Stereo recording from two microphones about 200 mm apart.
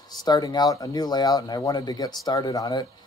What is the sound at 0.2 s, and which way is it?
Speech, 20° left (ahead or behind).